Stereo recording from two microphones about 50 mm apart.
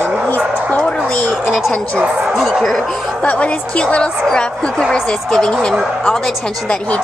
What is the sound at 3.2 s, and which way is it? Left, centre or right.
Speech, left.